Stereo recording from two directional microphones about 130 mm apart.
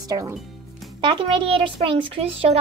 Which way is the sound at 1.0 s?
40° right (ahead or behind).